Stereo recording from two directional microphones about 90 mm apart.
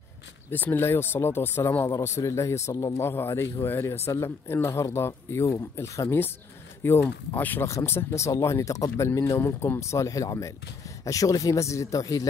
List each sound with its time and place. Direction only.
0.5 s a man's voice: 20° left (ahead or behind); by 12.3 s 40° left (ahead or behind)